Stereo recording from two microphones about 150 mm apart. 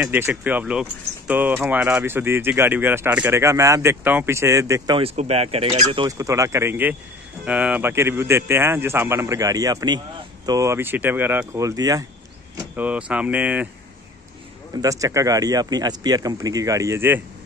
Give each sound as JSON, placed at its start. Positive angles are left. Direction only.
{"t": 0.0, "sound": "speech", "side_deg": -10}
{"t": 4.9, "sound": "speech", "side_deg": -40}
{"t": 5.7, "sound": "speech", "side_deg": -30}
{"t": 12.7, "sound": "speech", "side_deg": -10}
{"t": 14.8, "sound": "speech", "side_deg": -20}